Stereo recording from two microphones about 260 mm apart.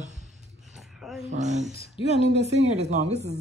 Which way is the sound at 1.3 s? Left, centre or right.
Right.